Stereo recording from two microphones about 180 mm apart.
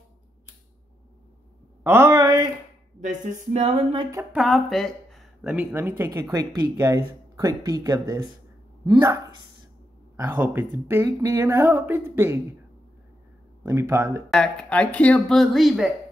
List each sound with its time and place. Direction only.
1.8 s a sound: 15° right (ahead or behind)
3.0 s speech: 45° right (ahead or behind); by 4.2 s 25° right (ahead or behind)
4.2 s speech: 5° right (ahead or behind); by 9.2 s 20° right (ahead or behind)
10.3 s speech: 10° right (ahead or behind)
13.7 s speech: 15° right (ahead or behind)
14.3 s speech: 5° left (ahead or behind)